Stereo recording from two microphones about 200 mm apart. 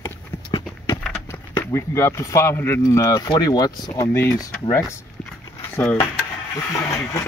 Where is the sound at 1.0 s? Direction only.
10° left (ahead or behind).